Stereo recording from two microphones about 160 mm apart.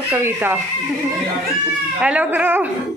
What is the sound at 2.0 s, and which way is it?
Speech, 10° right (ahead or behind).